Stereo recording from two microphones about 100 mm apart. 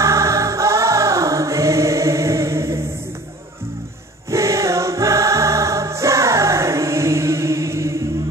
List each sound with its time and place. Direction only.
0.0 s choir: 30° right (ahead or behind)
4.3 s music: 30° right (ahead or behind)